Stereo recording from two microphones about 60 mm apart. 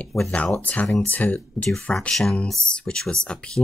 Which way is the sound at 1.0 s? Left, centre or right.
Left.